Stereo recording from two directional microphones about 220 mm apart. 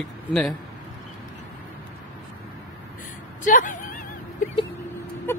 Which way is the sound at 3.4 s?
35° left (ahead or behind).